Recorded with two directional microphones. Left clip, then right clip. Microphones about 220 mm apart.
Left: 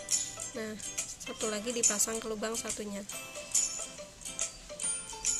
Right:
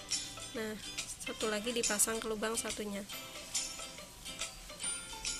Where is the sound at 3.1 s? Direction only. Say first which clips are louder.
Left 5 dB; 45° left (ahead or behind).